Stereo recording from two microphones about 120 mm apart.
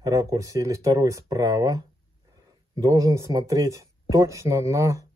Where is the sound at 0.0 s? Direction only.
30° right (ahead or behind).